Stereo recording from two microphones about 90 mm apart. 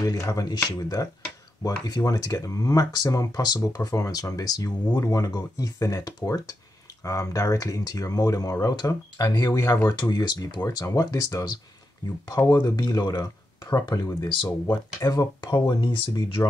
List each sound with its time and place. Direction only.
0.0 s speech: 35° left (ahead or behind)
12.6 s speech: 50° left (ahead or behind)
14.3 s speech: 60° left (ahead or behind)